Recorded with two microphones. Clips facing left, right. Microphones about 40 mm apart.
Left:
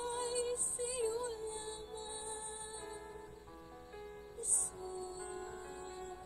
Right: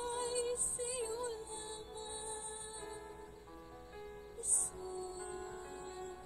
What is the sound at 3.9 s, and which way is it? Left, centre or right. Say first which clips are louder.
Music: even; right.